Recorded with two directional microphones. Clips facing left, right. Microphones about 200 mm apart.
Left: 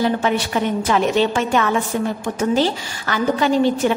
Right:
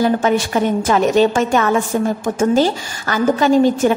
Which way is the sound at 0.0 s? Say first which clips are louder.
Right 4 dB; 45° right (ahead or behind).